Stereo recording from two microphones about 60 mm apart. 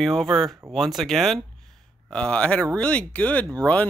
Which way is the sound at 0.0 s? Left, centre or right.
Centre.